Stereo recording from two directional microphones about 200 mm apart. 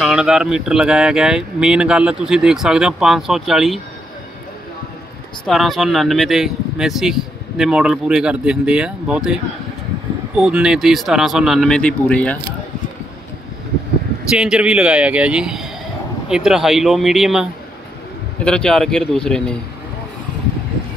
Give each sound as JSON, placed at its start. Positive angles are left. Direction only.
{"t": 0.0, "sound": "speech", "side_deg": 0}
{"t": 5.4, "sound": "speech", "side_deg": 0}
{"t": 14.3, "sound": "speech", "side_deg": -5}